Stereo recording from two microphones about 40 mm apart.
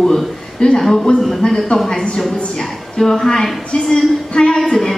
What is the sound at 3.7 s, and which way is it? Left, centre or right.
Speech, centre.